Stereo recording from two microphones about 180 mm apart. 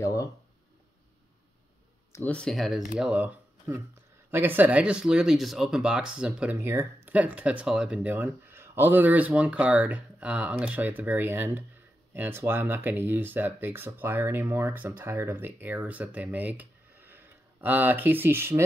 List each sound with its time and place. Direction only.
0.0 s speech: 15° left (ahead or behind)
2.1 s speech: 5° left (ahead or behind); by 18.6 s 15° right (ahead or behind)